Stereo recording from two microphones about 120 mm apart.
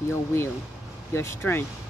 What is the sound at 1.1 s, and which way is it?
Speech, 20° left (ahead or behind).